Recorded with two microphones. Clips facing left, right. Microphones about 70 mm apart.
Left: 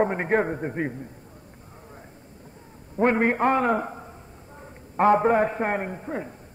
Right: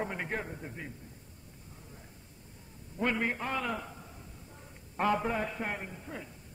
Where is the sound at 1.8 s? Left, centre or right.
Left.